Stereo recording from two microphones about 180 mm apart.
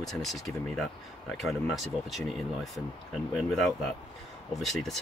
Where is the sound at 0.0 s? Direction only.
Centre (ahead or behind).